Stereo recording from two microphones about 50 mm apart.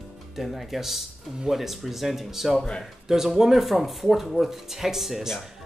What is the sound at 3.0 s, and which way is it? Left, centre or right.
Speech, centre.